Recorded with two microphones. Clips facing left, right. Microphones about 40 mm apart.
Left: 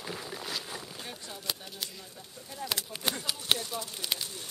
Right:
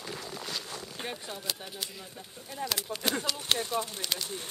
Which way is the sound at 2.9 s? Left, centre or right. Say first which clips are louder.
Right 6 dB; right.